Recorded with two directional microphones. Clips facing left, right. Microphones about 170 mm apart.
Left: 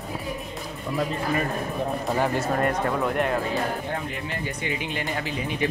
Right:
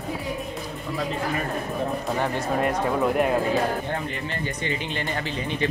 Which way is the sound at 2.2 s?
5° right (ahead or behind).